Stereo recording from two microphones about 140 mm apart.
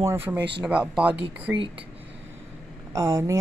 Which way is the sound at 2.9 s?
20° right (ahead or behind).